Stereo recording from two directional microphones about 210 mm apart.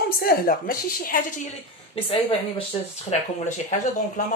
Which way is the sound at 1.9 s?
25° left (ahead or behind).